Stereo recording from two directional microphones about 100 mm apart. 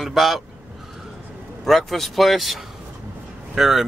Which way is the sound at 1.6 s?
Centre (ahead or behind).